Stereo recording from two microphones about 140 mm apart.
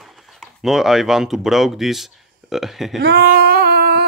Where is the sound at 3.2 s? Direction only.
90° right.